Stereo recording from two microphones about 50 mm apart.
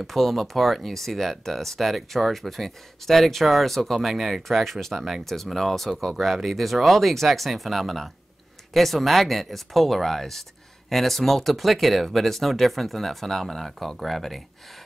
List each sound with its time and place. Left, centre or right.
0.0 s speech: centre